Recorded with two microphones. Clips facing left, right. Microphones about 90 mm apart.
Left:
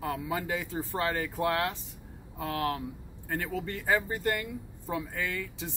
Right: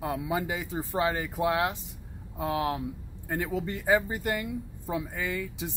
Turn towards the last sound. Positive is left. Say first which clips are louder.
# right 2 dB
turn(degrees=-15)  # may be behind; listen again after turning